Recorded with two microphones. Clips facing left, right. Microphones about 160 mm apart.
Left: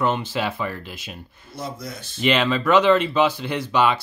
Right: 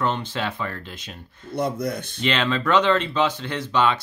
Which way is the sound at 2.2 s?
10° left (ahead or behind).